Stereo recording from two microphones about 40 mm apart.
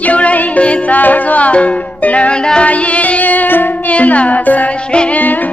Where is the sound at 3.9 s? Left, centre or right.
Left.